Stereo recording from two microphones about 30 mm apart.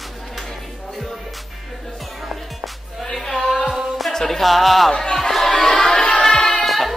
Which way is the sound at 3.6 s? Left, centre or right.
Right.